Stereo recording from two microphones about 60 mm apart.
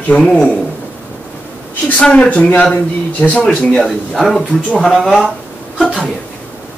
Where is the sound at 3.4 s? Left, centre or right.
Centre.